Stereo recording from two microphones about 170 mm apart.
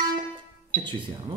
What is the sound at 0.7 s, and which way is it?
Music, 55° right (ahead or behind).